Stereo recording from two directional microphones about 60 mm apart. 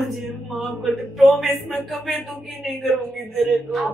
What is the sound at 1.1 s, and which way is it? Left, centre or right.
A man's voice, centre.